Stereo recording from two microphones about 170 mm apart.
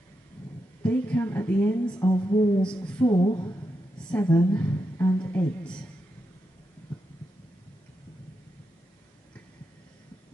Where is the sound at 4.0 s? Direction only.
5° left (ahead or behind).